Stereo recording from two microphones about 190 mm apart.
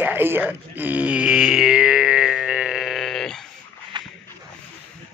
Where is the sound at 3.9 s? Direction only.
25° right (ahead or behind).